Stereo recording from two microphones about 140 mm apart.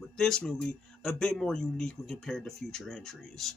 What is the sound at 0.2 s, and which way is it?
Speech, 5° left (ahead or behind).